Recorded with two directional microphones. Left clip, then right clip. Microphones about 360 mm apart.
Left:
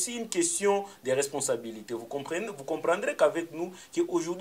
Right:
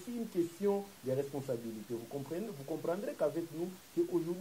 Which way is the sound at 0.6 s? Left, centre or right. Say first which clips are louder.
Left 8 dB; centre.